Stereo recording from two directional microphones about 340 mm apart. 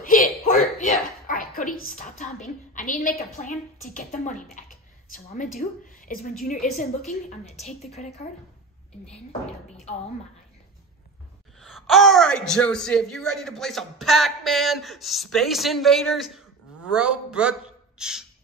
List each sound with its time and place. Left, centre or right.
0.0 s a sound: left
2.7 s a woman's voice: left
11.6 s a man's voice: centre